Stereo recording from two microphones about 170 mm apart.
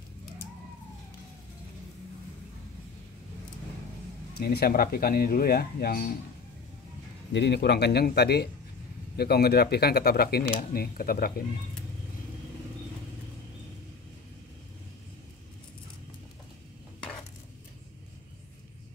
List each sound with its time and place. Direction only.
4.4 s speech: 65° left (ahead or behind)
7.3 s speech: 85° left; by 11.4 s 60° left (ahead or behind)